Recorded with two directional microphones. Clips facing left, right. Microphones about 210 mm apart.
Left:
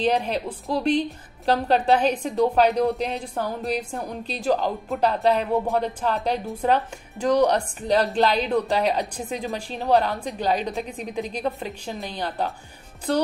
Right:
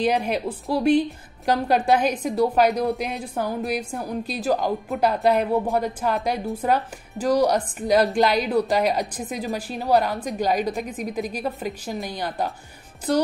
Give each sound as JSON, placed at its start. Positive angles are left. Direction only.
{"t": 0.0, "sound": "a woman's voice", "side_deg": -10}